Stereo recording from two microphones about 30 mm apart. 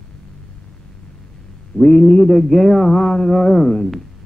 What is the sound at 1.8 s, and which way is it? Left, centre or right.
Speech, left.